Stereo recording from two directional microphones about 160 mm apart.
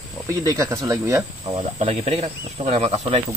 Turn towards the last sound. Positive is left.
turn(degrees=-40)  # may be behind; listen again after turning